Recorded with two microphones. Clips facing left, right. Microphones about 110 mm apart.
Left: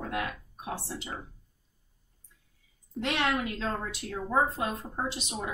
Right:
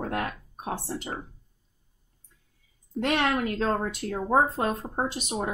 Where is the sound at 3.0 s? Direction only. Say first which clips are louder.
Right 4 dB; 50° right (ahead or behind).